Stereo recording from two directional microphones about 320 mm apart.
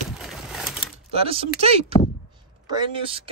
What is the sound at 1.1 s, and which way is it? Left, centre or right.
Speech, centre.